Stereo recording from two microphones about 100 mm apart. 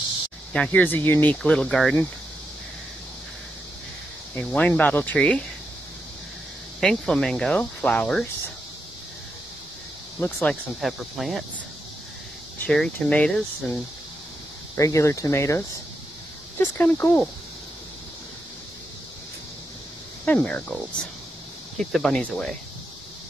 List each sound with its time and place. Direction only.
0.7 s speech: 20° left (ahead or behind)
1.4 s speech: 5° left (ahead or behind)
4.4 s speech: 10° left (ahead or behind)
6.8 s speech: 5° left (ahead or behind)
10.2 s speech: 25° left (ahead or behind)
10.5 s speech: centre (ahead or behind)
12.6 s speech: 5° left (ahead or behind)
14.8 s speech: 30° left (ahead or behind)
16.5 s speech: 20° left (ahead or behind)
20.2 s speech: 15° left (ahead or behind)